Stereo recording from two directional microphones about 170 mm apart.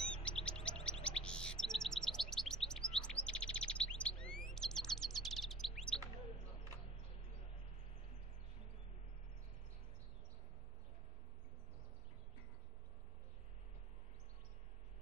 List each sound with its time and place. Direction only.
0.1 s chirp: 5° left (ahead or behind)
4.2 s chirp tone: 5° left (ahead or behind)
4.6 s chirp: 5° left (ahead or behind)